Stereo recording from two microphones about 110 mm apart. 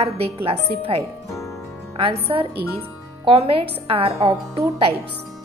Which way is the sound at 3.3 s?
55° right (ahead or behind).